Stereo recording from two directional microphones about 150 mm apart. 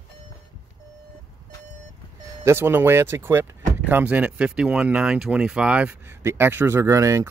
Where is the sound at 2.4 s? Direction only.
15° right (ahead or behind).